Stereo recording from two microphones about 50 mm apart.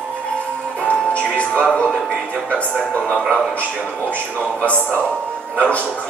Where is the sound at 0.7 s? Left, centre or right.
Left.